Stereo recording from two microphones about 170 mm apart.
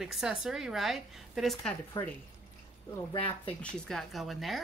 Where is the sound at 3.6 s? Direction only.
5° left (ahead or behind).